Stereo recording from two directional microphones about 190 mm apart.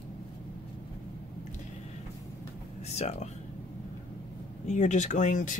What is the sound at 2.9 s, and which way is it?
Speech, 35° left (ahead or behind).